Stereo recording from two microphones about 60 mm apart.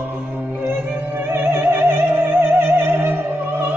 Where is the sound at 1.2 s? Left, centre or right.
Right.